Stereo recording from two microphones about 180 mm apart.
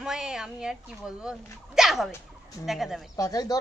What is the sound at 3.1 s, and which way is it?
Speech, 20° left (ahead or behind).